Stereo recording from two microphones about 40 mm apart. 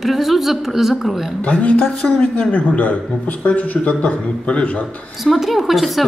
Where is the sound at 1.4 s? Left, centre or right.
Left.